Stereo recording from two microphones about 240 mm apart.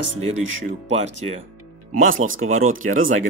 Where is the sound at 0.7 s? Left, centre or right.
Right.